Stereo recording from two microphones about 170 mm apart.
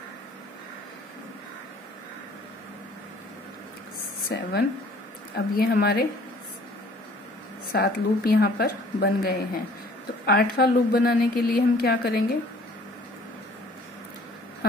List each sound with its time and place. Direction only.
4.3 s a woman's voice: 70° left (ahead or behind)
7.7 s a woman's voice: 65° left (ahead or behind)